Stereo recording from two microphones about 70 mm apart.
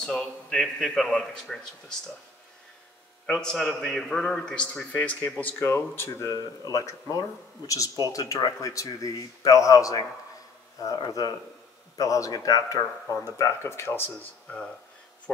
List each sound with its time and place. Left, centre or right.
0.0 s a man's voice: centre
3.3 s a man's voice: centre
4.9 s speech: left
6.0 s speech: left
14.1 s a man's voice: centre